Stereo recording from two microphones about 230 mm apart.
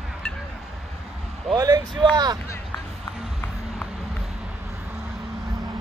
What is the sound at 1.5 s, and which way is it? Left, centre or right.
Speech, centre.